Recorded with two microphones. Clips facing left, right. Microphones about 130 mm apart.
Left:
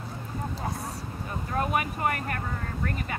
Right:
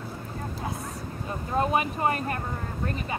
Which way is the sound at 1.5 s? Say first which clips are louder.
Right 3 dB; 25° right (ahead or behind).